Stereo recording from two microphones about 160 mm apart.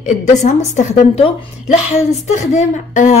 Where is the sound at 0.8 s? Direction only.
40° left (ahead or behind).